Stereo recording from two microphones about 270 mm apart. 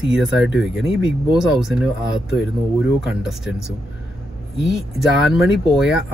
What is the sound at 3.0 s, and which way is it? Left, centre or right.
Speech, centre.